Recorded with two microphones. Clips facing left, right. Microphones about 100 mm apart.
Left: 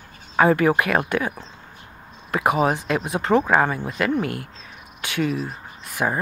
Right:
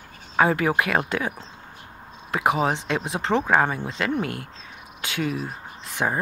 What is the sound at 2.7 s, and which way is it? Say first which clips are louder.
Speech: left 3 dB; 25° right (ahead or behind).